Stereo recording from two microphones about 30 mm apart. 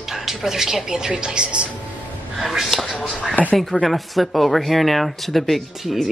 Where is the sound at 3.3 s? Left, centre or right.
Left.